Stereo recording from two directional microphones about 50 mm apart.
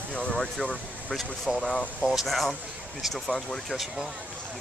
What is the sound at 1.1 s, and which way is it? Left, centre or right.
Speech, centre.